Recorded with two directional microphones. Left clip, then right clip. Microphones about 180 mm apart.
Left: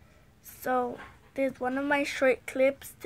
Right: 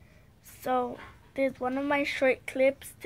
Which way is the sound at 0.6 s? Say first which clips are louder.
Even; 15° left (ahead or behind).